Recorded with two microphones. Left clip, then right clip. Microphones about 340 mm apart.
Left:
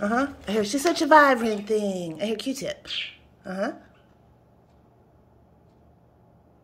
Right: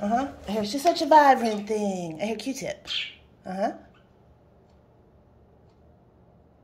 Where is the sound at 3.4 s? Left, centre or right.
Centre.